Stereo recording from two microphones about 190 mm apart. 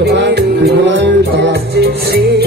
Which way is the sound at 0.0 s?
60° right (ahead or behind).